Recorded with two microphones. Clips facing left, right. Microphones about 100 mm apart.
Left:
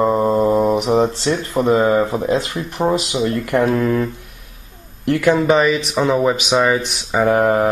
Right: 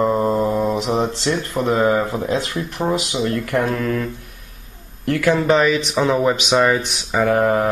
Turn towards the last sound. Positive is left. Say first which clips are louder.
# left 2 dB
turn(degrees=15)  # may be behind; listen again after turning